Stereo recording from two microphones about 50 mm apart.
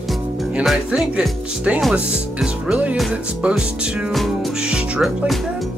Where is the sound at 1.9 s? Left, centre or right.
Centre.